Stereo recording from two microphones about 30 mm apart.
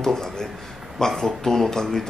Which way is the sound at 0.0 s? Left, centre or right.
Centre.